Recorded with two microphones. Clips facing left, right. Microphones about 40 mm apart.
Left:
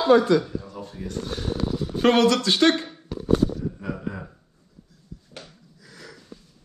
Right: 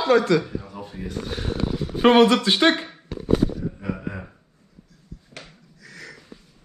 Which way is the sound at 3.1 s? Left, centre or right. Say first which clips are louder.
Even; centre.